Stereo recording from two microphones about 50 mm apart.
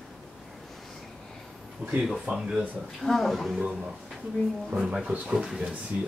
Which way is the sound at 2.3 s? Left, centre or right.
Centre.